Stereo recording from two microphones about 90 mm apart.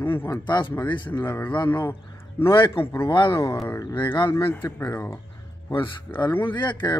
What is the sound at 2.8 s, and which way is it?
Speech, 90° left.